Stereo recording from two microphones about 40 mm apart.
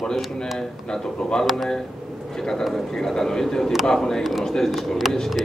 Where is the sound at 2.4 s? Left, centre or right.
Centre.